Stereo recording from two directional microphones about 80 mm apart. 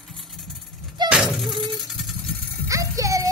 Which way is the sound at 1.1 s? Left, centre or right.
Centre.